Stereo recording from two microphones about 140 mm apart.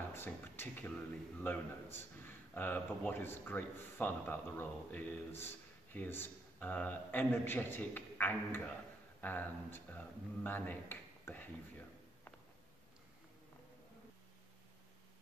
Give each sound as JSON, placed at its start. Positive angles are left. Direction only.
{"t": 0.1, "sound": "a man's voice", "side_deg": 15}